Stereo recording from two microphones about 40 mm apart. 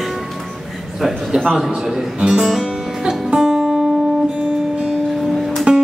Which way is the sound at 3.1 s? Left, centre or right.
Centre.